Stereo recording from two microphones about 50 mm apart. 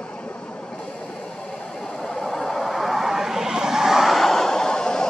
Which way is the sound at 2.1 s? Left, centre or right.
Centre.